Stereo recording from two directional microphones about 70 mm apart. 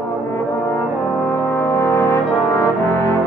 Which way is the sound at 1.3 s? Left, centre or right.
Left.